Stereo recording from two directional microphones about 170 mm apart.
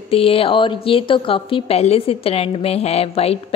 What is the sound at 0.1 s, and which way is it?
A woman's voice, 35° left (ahead or behind).